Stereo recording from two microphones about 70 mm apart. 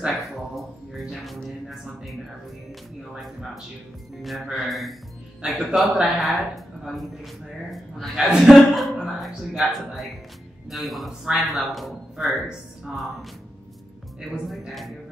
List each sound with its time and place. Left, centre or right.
0.0 s music: centre
4.2 s a man's voice: centre
5.4 s a man's voice: centre
14.3 s a man's voice: centre